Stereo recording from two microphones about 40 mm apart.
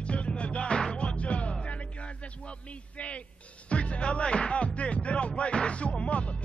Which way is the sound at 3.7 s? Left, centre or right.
Left.